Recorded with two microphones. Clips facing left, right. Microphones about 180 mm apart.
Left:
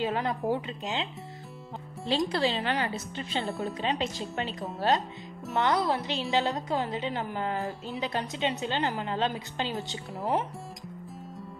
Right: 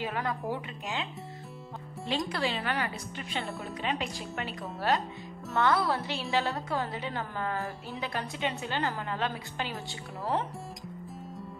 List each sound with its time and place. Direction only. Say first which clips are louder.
0.0 s a woman's voice: left 4 dB; 25° left (ahead or behind)
2.3 s a woman's voice: left 3 dB; 30° left (ahead or behind)